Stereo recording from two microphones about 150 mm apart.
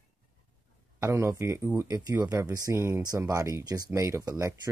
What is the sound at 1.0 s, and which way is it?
Speech, 20° right (ahead or behind).